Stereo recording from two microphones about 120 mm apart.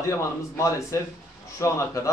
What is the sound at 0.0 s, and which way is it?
A man's voice, 25° left (ahead or behind).